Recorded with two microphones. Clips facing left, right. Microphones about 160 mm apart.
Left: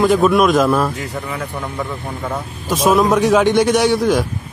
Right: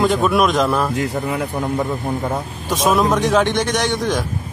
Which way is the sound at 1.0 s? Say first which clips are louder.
Right 4 dB; 35° right (ahead or behind).